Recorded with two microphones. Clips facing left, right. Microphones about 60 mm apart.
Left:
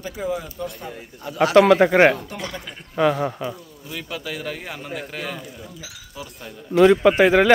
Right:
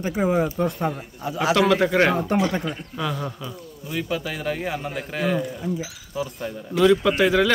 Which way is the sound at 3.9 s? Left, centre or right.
Centre.